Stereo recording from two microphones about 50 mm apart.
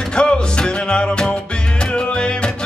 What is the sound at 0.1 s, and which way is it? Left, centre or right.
Music, centre.